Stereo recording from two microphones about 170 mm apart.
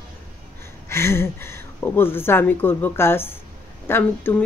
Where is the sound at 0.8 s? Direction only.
15° left (ahead or behind).